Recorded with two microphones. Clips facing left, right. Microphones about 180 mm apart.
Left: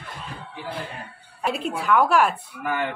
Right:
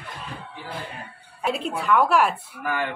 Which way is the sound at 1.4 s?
Centre (ahead or behind).